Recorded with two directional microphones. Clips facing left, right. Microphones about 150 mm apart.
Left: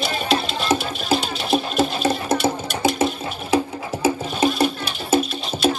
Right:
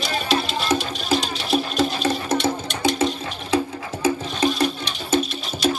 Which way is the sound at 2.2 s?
10° left (ahead or behind).